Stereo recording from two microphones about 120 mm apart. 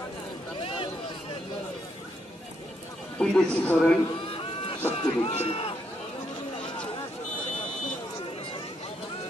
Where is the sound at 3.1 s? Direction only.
10° left (ahead or behind).